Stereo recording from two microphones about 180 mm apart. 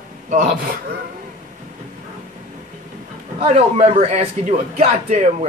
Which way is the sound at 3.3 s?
35° right (ahead or behind).